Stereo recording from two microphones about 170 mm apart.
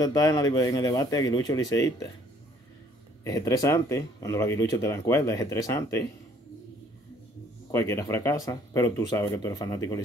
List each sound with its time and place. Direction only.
0.0 s speech: 20° left (ahead or behind)
3.3 s speech: 20° left (ahead or behind)
7.7 s speech: 15° left (ahead or behind)